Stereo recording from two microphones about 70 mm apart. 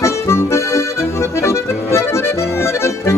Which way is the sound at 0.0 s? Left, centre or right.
Left.